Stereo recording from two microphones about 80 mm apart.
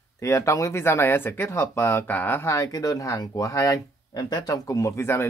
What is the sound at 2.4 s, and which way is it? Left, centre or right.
Speech, left.